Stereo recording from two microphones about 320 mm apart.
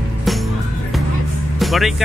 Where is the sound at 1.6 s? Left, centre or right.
Centre.